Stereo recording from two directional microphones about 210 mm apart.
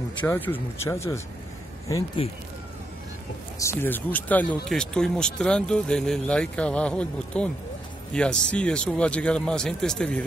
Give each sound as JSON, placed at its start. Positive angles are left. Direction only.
{"t": 0.2, "sound": "speech", "side_deg": 10}
{"t": 2.2, "sound": "speech", "side_deg": 25}
{"t": 3.5, "sound": "speech", "side_deg": 10}